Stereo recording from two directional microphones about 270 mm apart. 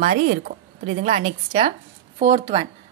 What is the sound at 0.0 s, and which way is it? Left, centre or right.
Speech, right.